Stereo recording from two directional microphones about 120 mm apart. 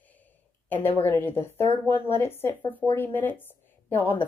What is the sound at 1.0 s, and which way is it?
A woman's voice, 15° left (ahead or behind).